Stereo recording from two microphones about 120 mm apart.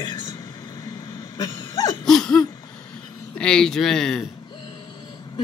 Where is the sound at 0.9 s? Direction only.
35° left (ahead or behind).